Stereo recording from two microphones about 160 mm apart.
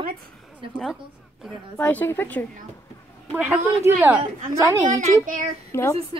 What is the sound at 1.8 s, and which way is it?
Speech, 10° left (ahead or behind).